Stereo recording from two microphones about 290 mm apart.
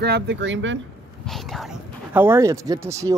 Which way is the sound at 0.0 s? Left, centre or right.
Right.